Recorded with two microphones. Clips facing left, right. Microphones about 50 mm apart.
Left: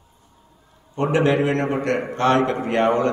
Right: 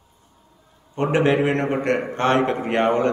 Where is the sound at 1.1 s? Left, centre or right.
Right.